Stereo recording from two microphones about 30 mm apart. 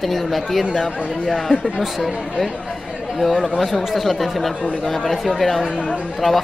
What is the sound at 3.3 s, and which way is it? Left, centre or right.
Speech, left.